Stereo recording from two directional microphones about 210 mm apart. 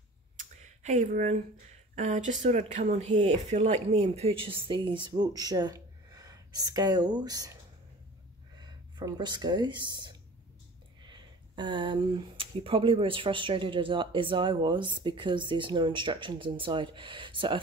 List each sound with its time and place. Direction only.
0.4 s a sound: 35° right (ahead or behind)
2.0 s speech: 35° right (ahead or behind); by 7.5 s 20° right (ahead or behind)
8.5 s speech: 20° right (ahead or behind)